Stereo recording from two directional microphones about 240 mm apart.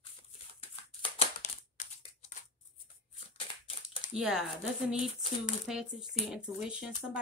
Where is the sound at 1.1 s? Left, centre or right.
Left.